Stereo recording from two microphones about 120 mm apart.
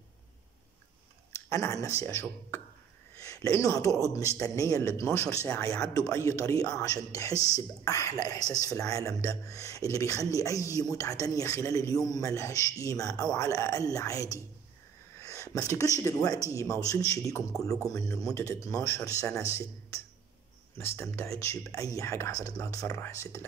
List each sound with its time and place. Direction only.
1.5 s speech: 25° left (ahead or behind)
20.7 s speech: 20° left (ahead or behind)